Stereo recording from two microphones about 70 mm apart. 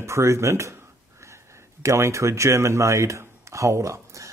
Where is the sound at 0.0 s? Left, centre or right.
Right.